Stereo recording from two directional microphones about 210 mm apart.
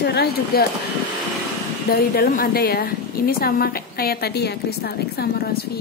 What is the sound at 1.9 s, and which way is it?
A woman's voice, 45° left (ahead or behind).